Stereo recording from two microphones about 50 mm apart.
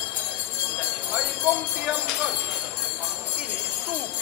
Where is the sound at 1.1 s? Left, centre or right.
Centre.